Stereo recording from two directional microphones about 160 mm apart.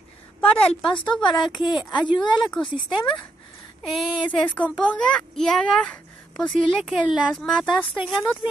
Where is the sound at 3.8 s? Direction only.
10° left (ahead or behind).